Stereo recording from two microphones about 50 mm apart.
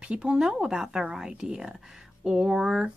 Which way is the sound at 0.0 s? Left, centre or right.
Centre.